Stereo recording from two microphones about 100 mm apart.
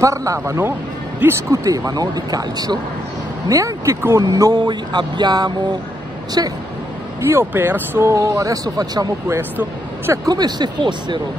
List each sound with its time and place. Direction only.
0.0 s speech: 35° right (ahead or behind)
4.2 s speech: 40° right (ahead or behind)
7.2 s speech: 25° right (ahead or behind); by 11.1 s 50° right (ahead or behind)